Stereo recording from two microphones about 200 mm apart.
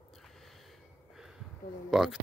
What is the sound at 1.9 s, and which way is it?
Speech, centre (ahead or behind).